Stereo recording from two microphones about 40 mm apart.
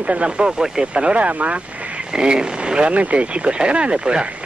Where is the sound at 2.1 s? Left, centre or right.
Centre.